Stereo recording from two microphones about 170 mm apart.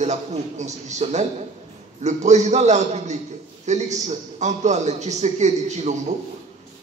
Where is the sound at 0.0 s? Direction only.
40° right (ahead or behind).